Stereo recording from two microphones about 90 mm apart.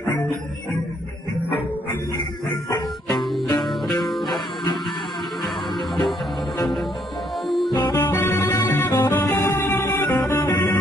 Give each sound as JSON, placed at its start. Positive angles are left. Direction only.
{"t": 3.2, "sound": "music", "side_deg": 0}
{"t": 7.4, "sound": "music", "side_deg": 0}
{"t": 7.9, "sound": "music", "side_deg": 25}